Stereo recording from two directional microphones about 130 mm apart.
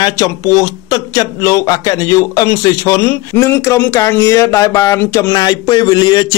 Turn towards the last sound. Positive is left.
turn(degrees=30)  # may be behind; listen again after turning